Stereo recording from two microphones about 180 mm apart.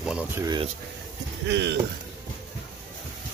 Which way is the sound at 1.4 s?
80° right.